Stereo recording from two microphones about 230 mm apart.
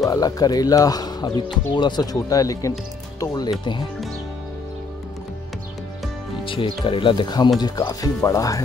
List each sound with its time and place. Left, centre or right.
0.0 s speech: centre
6.4 s speech: left